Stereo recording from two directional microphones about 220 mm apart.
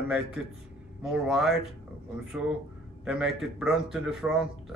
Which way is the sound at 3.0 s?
Centre (ahead or behind).